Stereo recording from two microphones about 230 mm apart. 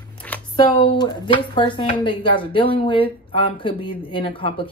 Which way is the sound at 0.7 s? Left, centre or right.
Centre.